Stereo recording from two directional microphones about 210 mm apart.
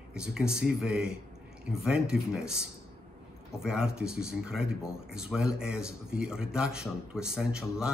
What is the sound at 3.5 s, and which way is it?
A man's voice, 5° right (ahead or behind).